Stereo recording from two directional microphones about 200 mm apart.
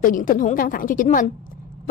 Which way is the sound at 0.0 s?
40° left (ahead or behind).